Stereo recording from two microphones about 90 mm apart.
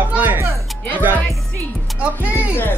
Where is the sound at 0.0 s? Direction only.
20° right (ahead or behind).